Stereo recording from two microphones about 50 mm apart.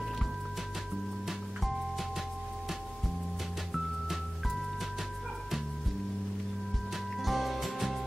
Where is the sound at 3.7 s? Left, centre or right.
Centre.